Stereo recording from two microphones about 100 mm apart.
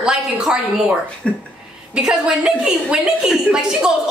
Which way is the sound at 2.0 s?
10° right (ahead or behind).